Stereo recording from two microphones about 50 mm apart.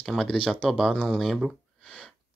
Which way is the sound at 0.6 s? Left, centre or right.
Centre.